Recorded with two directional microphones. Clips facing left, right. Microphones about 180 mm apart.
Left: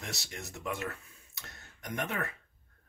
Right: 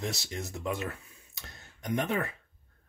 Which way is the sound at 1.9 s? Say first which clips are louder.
Right 5 dB; 20° right (ahead or behind).